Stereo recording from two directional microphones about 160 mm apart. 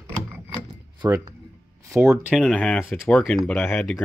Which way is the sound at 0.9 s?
25° right (ahead or behind).